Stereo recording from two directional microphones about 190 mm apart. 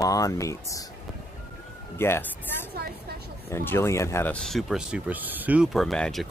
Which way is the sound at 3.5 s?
10° left (ahead or behind).